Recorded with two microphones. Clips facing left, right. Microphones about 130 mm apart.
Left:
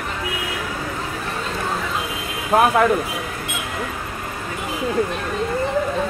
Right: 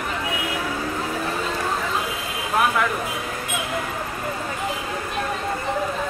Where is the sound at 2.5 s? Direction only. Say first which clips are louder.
Left 6 dB; 45° left (ahead or behind).